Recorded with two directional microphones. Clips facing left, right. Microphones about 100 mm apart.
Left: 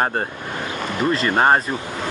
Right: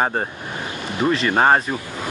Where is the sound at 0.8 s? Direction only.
40° left (ahead or behind).